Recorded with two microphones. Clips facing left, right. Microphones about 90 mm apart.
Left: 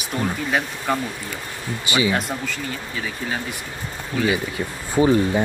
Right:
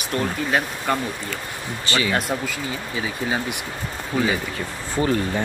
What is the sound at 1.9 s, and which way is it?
Speech, 15° left (ahead or behind).